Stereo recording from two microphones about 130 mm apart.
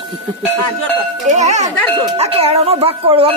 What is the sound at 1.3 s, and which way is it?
Speech, 60° right (ahead or behind).